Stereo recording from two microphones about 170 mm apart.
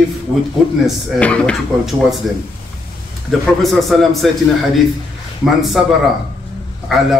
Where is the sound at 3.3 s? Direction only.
Centre (ahead or behind).